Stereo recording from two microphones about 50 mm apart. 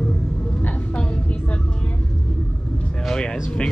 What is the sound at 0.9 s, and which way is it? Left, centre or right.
Vehicle, left.